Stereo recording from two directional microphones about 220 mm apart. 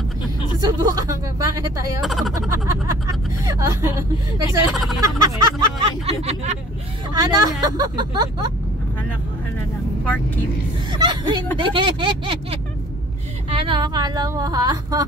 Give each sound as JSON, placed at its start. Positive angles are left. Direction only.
{"t": 0.6, "sound": "a woman's voice", "side_deg": -15}
{"t": 2.0, "sound": "speech", "side_deg": 0}
{"t": 2.3, "sound": "vehicle", "side_deg": -15}
{"t": 5.2, "sound": "a sound", "side_deg": -20}
{"t": 7.2, "sound": "a woman's voice", "side_deg": -15}
{"t": 10.0, "sound": "speech", "side_deg": 5}
{"t": 10.9, "sound": "a sound", "side_deg": -20}
{"t": 13.5, "sound": "a woman's voice", "side_deg": -25}